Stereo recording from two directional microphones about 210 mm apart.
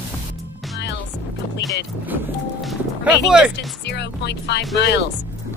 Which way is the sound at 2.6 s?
Centre (ahead or behind).